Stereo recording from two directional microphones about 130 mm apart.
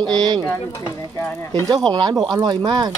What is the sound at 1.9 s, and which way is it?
Speech, 35° right (ahead or behind).